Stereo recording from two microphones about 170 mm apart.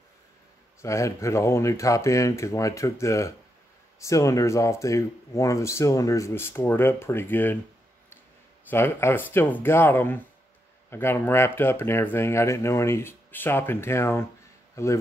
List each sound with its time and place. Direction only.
0.8 s speech: 15° left (ahead or behind)
8.6 s speech: 15° left (ahead or behind)